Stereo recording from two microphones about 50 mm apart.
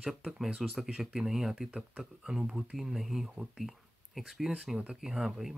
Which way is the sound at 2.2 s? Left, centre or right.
Centre.